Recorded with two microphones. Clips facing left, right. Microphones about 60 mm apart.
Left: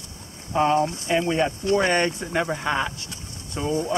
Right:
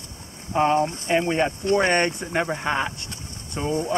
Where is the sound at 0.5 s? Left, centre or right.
Centre.